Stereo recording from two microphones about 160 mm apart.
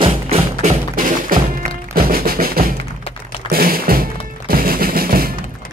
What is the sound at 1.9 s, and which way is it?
Music, 65° right (ahead or behind).